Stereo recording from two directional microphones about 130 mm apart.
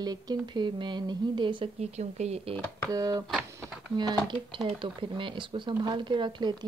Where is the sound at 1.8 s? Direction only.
55° right (ahead or behind).